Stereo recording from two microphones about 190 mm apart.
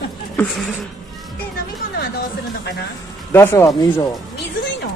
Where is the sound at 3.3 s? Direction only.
15° left (ahead or behind).